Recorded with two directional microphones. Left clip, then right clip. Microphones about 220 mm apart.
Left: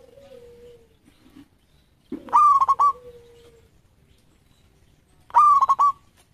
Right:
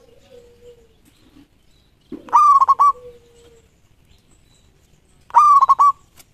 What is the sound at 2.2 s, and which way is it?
Goose, 15° right (ahead or behind).